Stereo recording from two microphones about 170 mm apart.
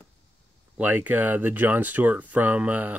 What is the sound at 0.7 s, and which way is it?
Speech, 10° right (ahead or behind).